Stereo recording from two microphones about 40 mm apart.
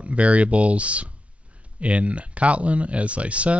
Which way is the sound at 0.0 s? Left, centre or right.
Right.